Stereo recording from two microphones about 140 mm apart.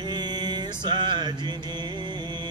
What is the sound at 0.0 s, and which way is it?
Music, 30° right (ahead or behind).